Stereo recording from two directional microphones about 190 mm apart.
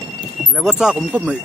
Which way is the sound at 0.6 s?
Centre (ahead or behind).